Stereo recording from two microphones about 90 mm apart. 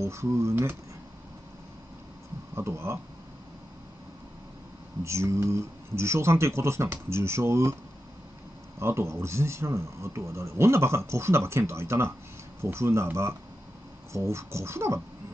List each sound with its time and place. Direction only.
0.0 s speech: 30° right (ahead or behind)
2.5 s speech: 30° right (ahead or behind)
5.0 s speech: 30° right (ahead or behind)
8.7 s speech: 30° right (ahead or behind)